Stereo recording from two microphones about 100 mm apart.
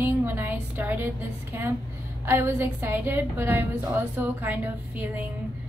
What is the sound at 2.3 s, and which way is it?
Speech, 20° right (ahead or behind).